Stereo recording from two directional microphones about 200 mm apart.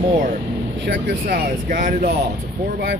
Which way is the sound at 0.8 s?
45° right (ahead or behind).